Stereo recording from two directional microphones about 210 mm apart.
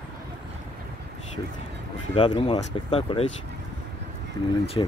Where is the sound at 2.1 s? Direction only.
20° left (ahead or behind).